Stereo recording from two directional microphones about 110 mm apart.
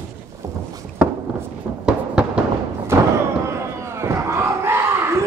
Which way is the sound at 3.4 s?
25° right (ahead or behind).